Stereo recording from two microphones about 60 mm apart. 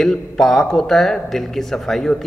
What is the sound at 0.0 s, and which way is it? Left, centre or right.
A man's voice, centre.